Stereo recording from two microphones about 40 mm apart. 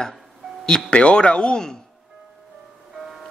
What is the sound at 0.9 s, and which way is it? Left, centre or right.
Speech, left.